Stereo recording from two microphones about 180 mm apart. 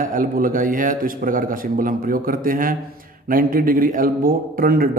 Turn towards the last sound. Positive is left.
turn(degrees=-50)  # may be behind; listen again after turning